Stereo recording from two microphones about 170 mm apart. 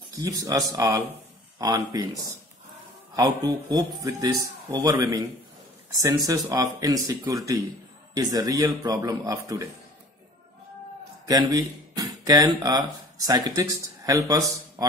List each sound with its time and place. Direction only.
0.2 s speech: 20° right (ahead or behind)
3.2 s speech: 20° right (ahead or behind)
11.2 s speech: 20° right (ahead or behind)